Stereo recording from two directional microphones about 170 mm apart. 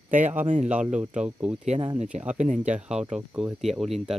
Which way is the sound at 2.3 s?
45° right (ahead or behind).